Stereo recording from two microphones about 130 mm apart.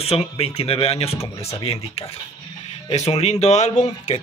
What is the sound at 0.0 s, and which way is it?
Speech, 50° left (ahead or behind).